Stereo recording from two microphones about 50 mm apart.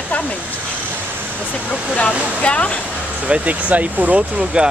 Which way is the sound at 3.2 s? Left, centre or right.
Right.